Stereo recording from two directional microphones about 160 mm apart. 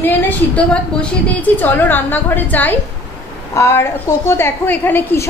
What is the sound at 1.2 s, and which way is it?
A woman's voice, 10° left (ahead or behind).